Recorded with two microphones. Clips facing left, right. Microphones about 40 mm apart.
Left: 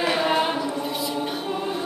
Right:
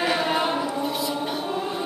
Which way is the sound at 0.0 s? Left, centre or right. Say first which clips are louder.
Left 1 dB; centre.